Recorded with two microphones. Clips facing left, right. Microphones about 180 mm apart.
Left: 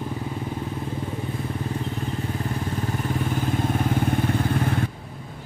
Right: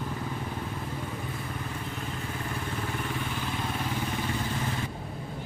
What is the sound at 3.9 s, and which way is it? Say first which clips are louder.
Motorcycle: left 8 dB; 55° left (ahead or behind).